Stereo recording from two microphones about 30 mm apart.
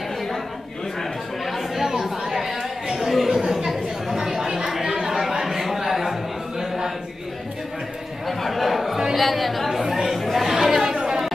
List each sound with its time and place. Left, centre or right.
1.4 s chatter: centre
2.3 s a sound: centre
3.3 s chatter: centre
6.6 s a sound: centre
8.3 s chatter: centre
9.8 s chatter: centre
10.1 s chatter: centre